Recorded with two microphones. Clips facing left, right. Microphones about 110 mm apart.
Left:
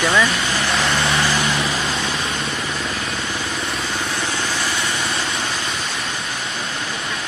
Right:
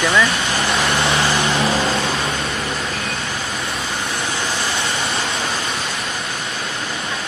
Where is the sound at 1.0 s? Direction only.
30° right (ahead or behind).